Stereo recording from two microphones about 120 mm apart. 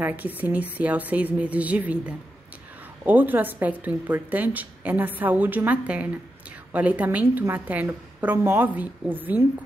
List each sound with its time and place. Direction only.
0.0 s a woman's voice: 15° right (ahead or behind)